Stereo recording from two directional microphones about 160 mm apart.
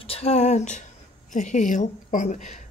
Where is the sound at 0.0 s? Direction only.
40° left (ahead or behind).